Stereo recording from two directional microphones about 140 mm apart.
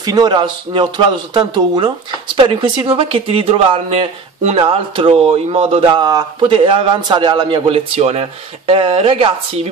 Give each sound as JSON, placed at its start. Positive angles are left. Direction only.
{"t": 0.0, "sound": "a man's voice", "side_deg": -30}